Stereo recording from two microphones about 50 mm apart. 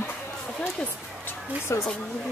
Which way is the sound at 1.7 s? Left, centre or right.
Left.